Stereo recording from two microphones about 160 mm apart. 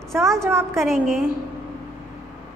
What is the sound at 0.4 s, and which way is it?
Speech, 15° right (ahead or behind).